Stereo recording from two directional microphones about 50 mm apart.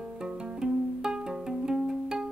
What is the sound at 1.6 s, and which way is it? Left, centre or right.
Music, centre.